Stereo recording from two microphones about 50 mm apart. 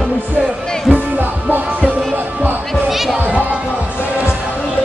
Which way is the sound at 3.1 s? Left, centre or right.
Right.